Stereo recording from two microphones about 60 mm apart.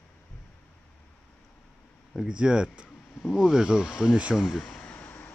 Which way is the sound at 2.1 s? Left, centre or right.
Centre.